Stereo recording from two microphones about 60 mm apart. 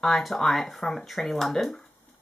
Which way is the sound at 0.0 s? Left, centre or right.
Centre.